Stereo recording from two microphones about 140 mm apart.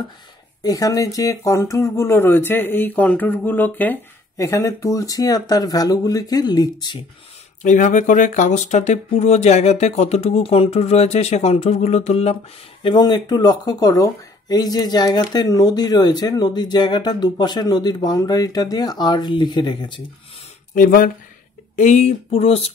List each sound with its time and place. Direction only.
0.6 s speech: 25° left (ahead or behind)
4.4 s speech: 25° left (ahead or behind)
7.6 s speech: 65° left (ahead or behind)
12.8 s speech: 30° left (ahead or behind)
20.7 s speech: 80° left
21.7 s speech: 60° left (ahead or behind)